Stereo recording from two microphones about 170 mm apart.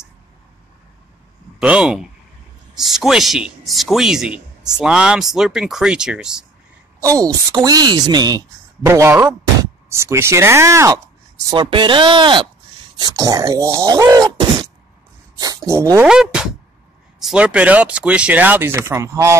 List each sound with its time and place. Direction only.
1.6 s a man's voice: 5° right (ahead or behind)
7.0 s a woman's voice: 20° right (ahead or behind)
11.5 s speech: 30° right (ahead or behind)
15.3 s a sound: 20° right (ahead or behind)
16.1 s a man's voice: 5° right (ahead or behind)